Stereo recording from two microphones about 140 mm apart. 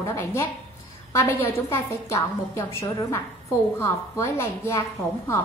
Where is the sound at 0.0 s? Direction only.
20° left (ahead or behind).